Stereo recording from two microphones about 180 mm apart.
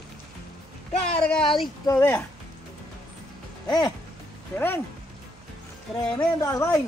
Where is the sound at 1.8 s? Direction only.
15° left (ahead or behind).